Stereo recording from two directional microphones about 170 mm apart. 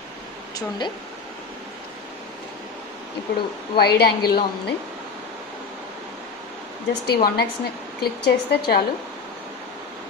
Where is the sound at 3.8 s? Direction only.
70° left (ahead or behind).